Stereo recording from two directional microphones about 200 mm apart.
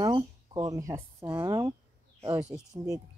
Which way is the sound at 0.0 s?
20° right (ahead or behind).